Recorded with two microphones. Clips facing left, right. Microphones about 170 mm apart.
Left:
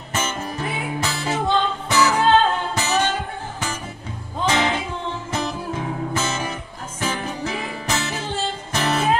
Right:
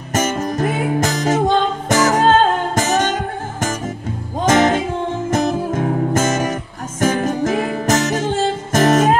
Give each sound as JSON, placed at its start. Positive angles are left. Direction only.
{"t": 0.1, "sound": "music", "side_deg": -45}